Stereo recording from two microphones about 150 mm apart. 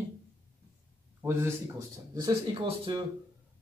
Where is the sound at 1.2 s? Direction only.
15° right (ahead or behind).